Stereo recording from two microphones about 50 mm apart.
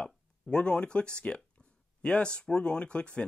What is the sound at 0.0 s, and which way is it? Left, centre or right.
Speech, centre.